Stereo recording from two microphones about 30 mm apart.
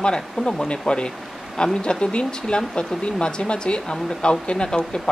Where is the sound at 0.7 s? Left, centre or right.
Left.